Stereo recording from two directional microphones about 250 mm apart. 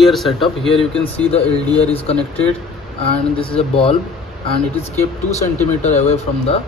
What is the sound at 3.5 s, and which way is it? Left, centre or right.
Speech, left.